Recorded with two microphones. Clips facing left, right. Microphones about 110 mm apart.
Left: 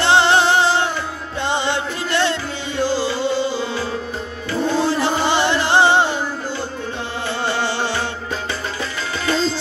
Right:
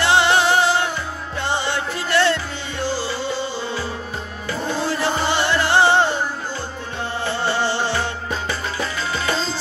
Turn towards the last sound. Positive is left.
turn(degrees=15)  # may be behind; listen again after turning